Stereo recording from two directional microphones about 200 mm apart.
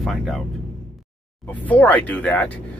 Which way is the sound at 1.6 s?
10° left (ahead or behind).